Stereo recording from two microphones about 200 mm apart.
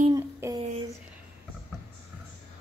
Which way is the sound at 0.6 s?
30° right (ahead or behind).